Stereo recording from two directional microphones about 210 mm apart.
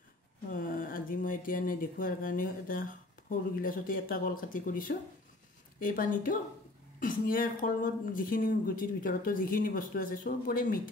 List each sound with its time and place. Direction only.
0.5 s speech: 40° left (ahead or behind)